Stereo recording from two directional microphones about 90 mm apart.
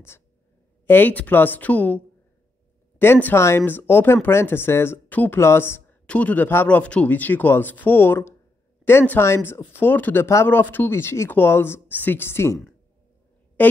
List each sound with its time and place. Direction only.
0.8 s speech: 20° left (ahead or behind)
3.0 s speech: 20° left (ahead or behind)
13.6 s a sound: 20° left (ahead or behind)